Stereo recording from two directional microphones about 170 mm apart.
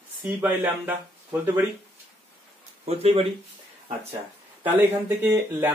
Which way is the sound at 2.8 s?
35° right (ahead or behind).